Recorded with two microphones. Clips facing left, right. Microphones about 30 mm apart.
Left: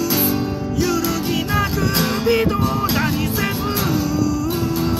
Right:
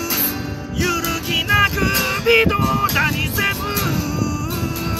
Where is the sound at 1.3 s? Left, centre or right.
Right.